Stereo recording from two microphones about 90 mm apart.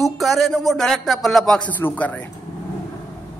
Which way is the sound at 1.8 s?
20° left (ahead or behind).